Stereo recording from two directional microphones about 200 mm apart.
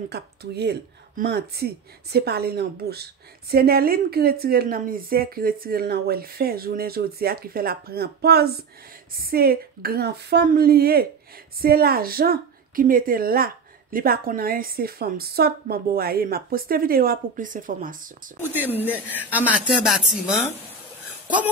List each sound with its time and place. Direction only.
0.1 s speech: 55° right (ahead or behind)
18.5 s speech: 10° right (ahead or behind)